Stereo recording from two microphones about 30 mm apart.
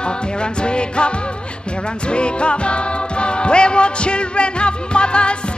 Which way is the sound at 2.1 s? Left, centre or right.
Left.